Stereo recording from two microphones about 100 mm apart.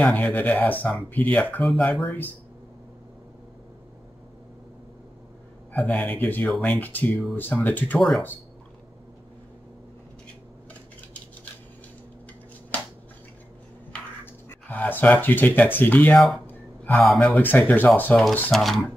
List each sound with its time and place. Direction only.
0.0 s speech: 15° left (ahead or behind)
5.7 s speech: 15° left (ahead or behind)
14.2 s speech: 20° left (ahead or behind)
16.4 s a sound: 20° left (ahead or behind)
17.2 s speech: 15° left (ahead or behind)
18.5 s speech: centre (ahead or behind)